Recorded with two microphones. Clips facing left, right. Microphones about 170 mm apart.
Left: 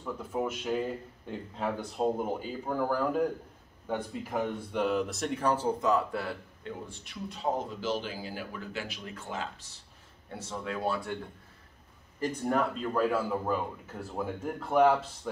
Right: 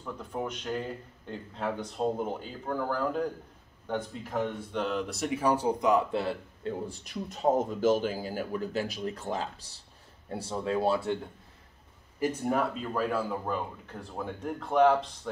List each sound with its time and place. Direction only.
0.0 s speech: 5° left (ahead or behind); by 6.3 s 20° right (ahead or behind)
6.6 s speech: 40° right (ahead or behind)
12.2 s speech: 5° right (ahead or behind)